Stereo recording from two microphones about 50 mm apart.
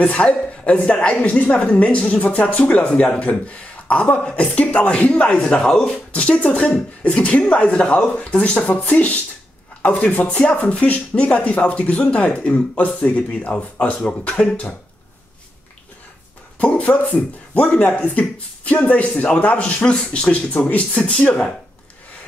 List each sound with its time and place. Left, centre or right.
0.0 s speech: left
6.1 s speech: left
16.5 s speech: left
21.0 s speech: centre